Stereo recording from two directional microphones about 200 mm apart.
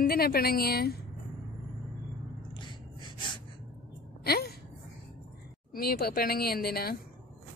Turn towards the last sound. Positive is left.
turn(degrees=50)  # may be behind; listen again after turning